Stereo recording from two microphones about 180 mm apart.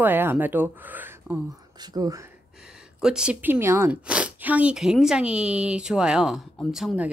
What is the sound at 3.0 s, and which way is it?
Speech, 5° right (ahead or behind).